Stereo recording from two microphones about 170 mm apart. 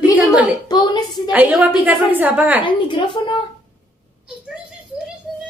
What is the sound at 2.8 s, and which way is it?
Speech, 30° left (ahead or behind).